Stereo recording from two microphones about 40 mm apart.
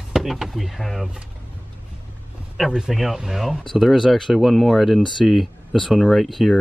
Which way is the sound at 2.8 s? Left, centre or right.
Centre.